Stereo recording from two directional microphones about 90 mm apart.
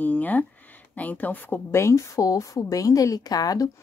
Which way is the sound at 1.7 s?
35° left (ahead or behind).